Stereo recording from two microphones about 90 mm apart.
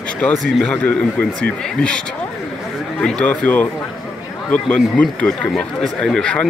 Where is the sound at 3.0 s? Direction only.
10° left (ahead or behind).